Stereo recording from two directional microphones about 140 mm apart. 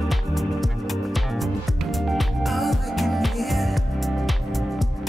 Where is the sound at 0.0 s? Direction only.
Centre (ahead or behind).